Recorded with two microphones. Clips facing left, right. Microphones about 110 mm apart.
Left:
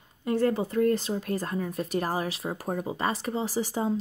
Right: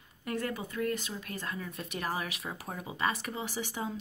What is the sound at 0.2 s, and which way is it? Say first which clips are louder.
Speech: left 10 dB; 30° left (ahead or behind).